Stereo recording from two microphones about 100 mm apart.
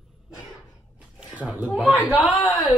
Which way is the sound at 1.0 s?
10° right (ahead or behind).